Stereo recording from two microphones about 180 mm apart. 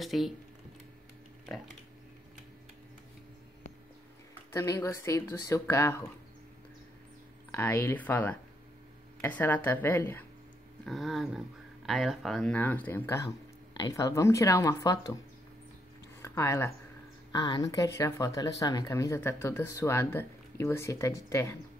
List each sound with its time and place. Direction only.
0.0 s speech: centre (ahead or behind)
4.5 s speech: 15° left (ahead or behind)
7.5 s speech: 15° left (ahead or behind)
10.9 s speech: centre (ahead or behind); by 15.1 s 20° left (ahead or behind)
16.2 s speech: 15° left (ahead or behind)
17.3 s speech: 25° left (ahead or behind)